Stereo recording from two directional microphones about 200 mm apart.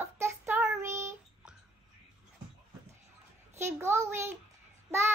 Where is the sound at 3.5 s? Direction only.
10° right (ahead or behind).